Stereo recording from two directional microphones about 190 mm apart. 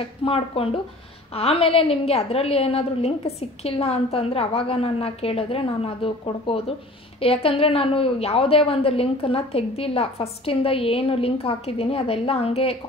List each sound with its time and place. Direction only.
0.2 s a woman's voice: 30° left (ahead or behind)